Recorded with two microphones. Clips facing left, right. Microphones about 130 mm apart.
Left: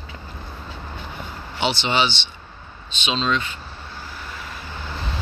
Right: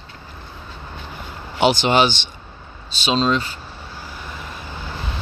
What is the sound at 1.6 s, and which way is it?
Speech, 45° right (ahead or behind).